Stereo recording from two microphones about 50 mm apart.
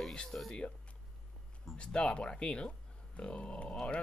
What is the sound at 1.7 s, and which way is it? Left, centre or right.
Speech, centre.